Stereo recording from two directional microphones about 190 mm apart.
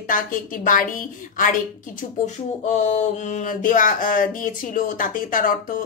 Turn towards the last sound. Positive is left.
turn(degrees=45)  # may be behind; listen again after turning